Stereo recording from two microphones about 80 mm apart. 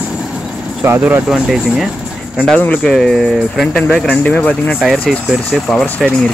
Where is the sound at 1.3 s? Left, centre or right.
Centre.